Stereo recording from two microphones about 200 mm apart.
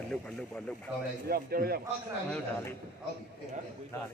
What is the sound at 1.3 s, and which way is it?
Speech, 50° right (ahead or behind).